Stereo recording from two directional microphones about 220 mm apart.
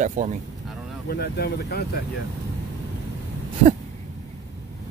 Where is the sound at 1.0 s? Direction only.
45° left (ahead or behind).